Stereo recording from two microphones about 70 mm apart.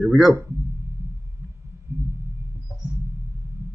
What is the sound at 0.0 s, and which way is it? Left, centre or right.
Speech, centre.